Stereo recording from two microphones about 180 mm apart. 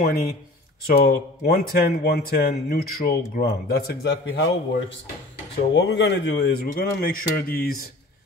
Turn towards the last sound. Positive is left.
turn(degrees=55)  # may be behind; listen again after turning